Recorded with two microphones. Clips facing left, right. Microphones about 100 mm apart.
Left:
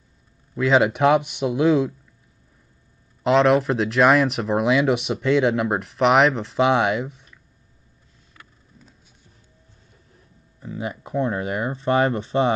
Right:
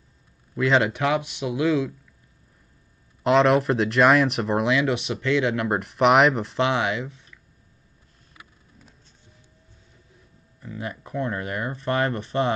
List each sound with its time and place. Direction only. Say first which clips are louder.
0.6 s speech: left 3 dB; 5° left (ahead or behind)
1.4 s speech: left 4 dB; 35° left (ahead or behind)
3.3 s speech: left 1 dB; centre (ahead or behind)
5.7 s speech: even; centre (ahead or behind)
10.6 s speech: left 4 dB; 20° left (ahead or behind)